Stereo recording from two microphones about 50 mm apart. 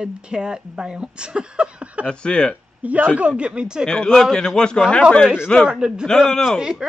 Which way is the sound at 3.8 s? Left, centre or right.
Centre.